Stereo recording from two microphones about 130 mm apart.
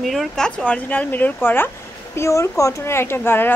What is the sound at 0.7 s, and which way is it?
A woman's voice, 10° left (ahead or behind).